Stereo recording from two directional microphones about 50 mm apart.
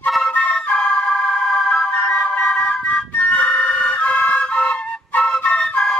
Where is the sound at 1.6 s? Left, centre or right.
Left.